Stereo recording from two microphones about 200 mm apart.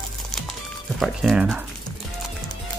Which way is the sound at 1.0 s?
Centre (ahead or behind).